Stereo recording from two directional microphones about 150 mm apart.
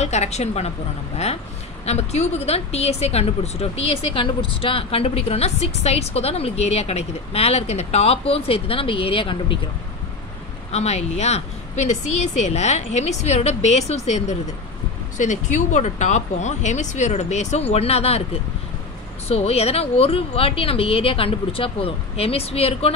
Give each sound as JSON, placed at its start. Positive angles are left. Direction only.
{"t": 0.0, "sound": "speech", "side_deg": 45}
{"t": 10.7, "sound": "speech", "side_deg": 45}